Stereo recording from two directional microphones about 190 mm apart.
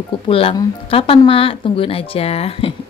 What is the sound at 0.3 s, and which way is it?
A woman's voice, 30° left (ahead or behind).